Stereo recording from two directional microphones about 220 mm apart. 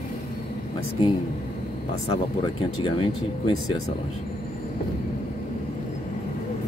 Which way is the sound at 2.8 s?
25° left (ahead or behind).